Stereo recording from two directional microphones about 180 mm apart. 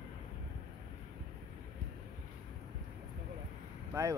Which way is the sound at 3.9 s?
15° right (ahead or behind).